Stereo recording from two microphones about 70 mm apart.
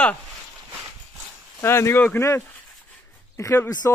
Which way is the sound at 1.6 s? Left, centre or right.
Left.